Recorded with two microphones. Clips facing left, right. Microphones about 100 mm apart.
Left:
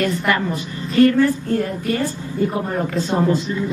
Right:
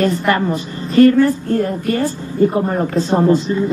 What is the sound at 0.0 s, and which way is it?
Speech, 35° right (ahead or behind).